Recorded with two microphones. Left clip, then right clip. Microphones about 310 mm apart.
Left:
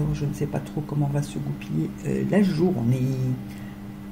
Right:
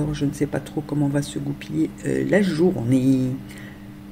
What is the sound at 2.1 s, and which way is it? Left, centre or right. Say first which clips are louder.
Speech: right 3 dB; right.